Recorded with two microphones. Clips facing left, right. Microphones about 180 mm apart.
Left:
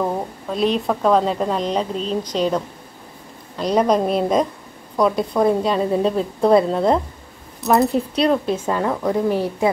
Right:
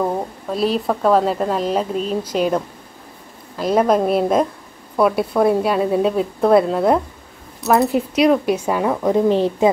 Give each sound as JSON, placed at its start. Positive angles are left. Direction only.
{"t": 0.0, "sound": "a woman's voice", "side_deg": -5}